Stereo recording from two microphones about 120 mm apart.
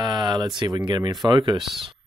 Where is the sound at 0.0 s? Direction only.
35° right (ahead or behind).